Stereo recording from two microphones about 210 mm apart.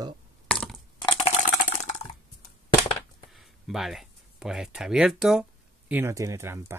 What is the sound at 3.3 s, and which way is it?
Speech, centre (ahead or behind).